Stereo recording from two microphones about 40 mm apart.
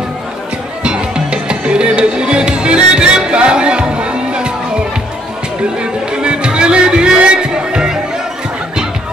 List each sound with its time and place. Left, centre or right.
0.8 s music: right
5.8 s music: right